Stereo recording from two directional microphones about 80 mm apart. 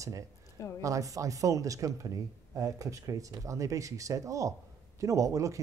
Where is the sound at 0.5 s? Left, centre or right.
Left.